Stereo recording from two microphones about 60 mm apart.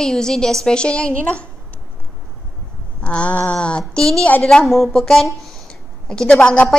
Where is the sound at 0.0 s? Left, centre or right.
Centre.